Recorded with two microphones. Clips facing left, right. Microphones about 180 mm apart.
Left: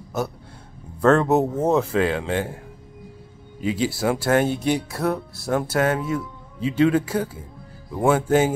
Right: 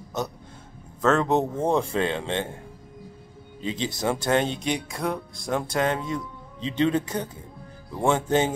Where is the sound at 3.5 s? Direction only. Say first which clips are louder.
Left 6 dB; 10° left (ahead or behind).